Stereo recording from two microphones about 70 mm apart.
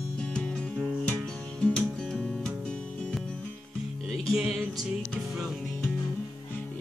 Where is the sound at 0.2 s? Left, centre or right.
Centre.